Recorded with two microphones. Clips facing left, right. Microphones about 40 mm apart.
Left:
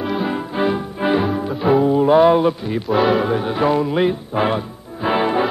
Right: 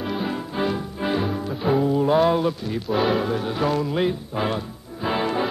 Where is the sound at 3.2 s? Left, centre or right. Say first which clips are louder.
Left 5 dB; left.